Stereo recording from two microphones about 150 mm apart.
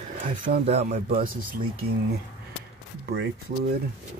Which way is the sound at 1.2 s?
75° right (ahead or behind).